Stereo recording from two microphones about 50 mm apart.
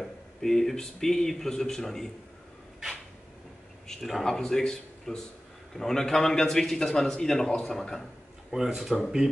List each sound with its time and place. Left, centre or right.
0.0 s speech: centre
3.8 s a man's voice: centre
8.5 s speech: centre